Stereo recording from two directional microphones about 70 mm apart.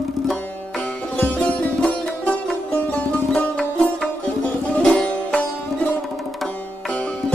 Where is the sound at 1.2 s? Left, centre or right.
Centre.